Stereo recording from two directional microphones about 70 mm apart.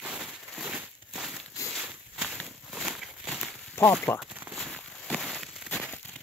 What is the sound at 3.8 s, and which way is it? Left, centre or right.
Speech, left.